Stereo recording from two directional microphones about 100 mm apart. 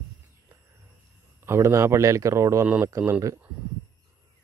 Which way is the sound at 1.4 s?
30° right (ahead or behind).